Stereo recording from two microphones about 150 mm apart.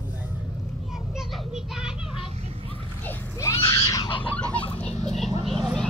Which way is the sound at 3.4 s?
20° left (ahead or behind).